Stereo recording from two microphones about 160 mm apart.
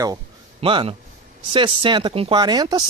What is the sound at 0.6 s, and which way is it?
Speech, 30° right (ahead or behind).